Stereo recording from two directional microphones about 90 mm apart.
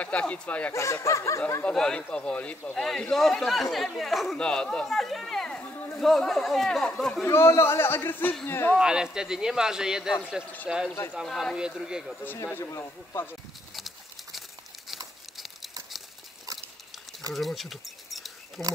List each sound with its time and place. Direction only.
0.0 s speech: 15° left (ahead or behind)
0.7 s speech: 35° left (ahead or behind)
1.6 s speech: 10° left (ahead or behind)
2.7 s speech: 5° left (ahead or behind)
5.6 s a sound: 20° left (ahead or behind)
5.9 s speech: centre (ahead or behind)
7.2 s a man's voice: 30° left (ahead or behind)
8.7 s speech: 10° right (ahead or behind)
12.4 s a man's voice: 25° left (ahead or behind)
13.7 s a sound: centre (ahead or behind)
17.3 s speech: centre (ahead or behind)